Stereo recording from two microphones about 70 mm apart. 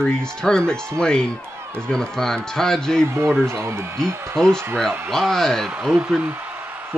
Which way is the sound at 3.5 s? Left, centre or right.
Right.